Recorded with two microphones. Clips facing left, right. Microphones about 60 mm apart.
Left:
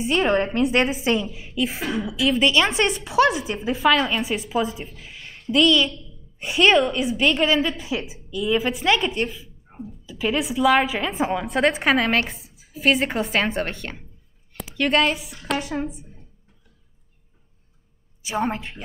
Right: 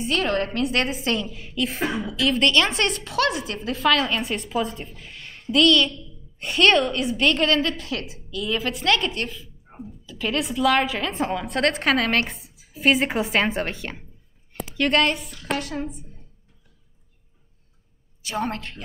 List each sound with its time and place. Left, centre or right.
0.0 s a woman's voice: centre
0.7 s a woman's voice: centre
9.7 s a sound: centre
10.0 s a woman's voice: centre
18.2 s a woman's voice: centre